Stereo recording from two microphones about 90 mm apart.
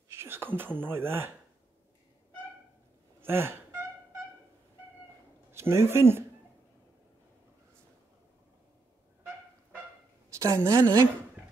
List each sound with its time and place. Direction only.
0.1 s speech: 25° right (ahead or behind)
3.2 s gasp: 25° right (ahead or behind)
5.5 s speech: 30° right (ahead or behind)
10.4 s a woman's voice: 30° right (ahead or behind)